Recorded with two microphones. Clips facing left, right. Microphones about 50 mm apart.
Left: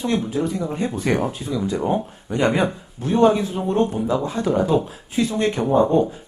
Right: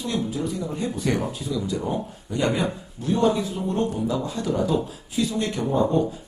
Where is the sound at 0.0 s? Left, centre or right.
Left.